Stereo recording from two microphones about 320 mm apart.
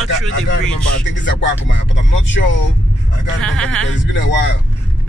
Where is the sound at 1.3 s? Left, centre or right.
Left.